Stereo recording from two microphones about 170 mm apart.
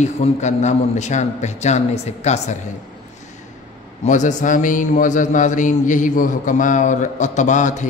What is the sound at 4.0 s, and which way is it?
A man's voice, 45° left (ahead or behind).